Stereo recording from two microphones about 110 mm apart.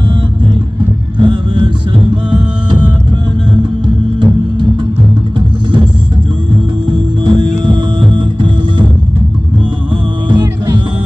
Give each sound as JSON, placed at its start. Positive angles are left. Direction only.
{"t": 1.2, "sound": "music", "side_deg": -50}
{"t": 3.8, "sound": "music", "side_deg": -45}
{"t": 6.5, "sound": "music", "side_deg": -50}
{"t": 10.2, "sound": "music", "side_deg": -40}